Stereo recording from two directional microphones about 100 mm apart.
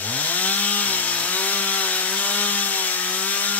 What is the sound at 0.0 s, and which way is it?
Chainsaw, 15° left (ahead or behind).